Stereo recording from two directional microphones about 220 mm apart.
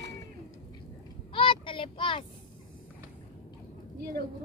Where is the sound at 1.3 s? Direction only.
25° left (ahead or behind).